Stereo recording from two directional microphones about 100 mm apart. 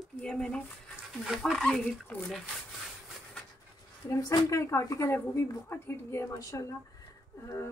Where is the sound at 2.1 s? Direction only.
15° left (ahead or behind).